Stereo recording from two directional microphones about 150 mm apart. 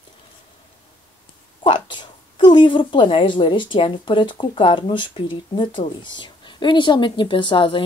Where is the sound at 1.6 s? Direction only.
30° left (ahead or behind).